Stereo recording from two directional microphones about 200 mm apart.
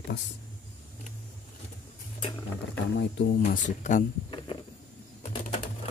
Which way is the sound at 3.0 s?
55° left (ahead or behind).